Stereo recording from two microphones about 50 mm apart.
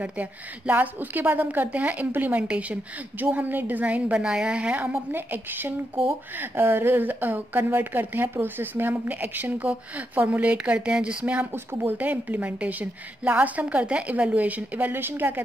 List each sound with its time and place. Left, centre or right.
0.0 s a woman's voice: right
2.4 s a woman's voice: right
3.2 s a woman's voice: right
4.2 s a woman's voice: centre
5.3 s a woman's voice: right
15.0 s a woman's voice: right